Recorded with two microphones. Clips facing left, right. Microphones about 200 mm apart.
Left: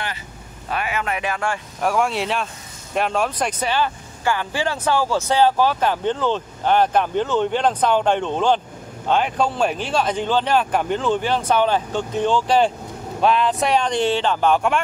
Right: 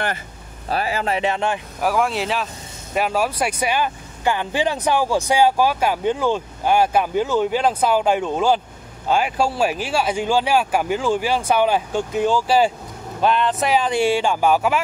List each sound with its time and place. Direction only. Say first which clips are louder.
0.7 s speech: right 3 dB; 35° right (ahead or behind)
1.8 s speech: even; centre (ahead or behind)